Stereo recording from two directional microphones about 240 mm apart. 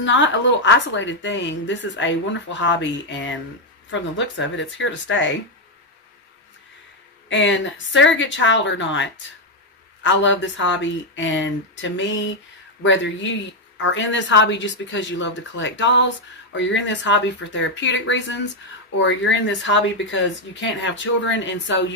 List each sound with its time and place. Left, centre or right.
0.0 s a woman's voice: left
7.2 s a woman's voice: left